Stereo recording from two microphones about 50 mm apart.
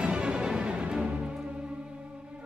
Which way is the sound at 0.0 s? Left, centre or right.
Right.